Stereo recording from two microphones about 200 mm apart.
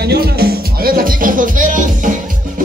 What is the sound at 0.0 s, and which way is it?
Music, 50° right (ahead or behind).